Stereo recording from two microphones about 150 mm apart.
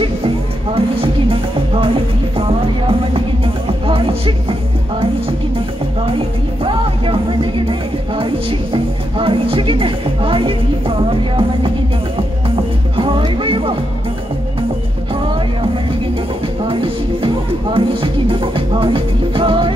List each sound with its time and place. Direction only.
0.7 s music: 40° right (ahead or behind)
6.6 s music: 35° right (ahead or behind)
16.6 s music: 35° right (ahead or behind)